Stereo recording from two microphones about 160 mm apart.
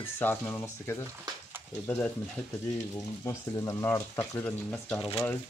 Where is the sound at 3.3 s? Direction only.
20° left (ahead or behind).